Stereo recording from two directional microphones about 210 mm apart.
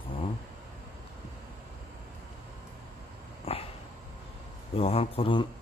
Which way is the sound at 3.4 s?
25° left (ahead or behind).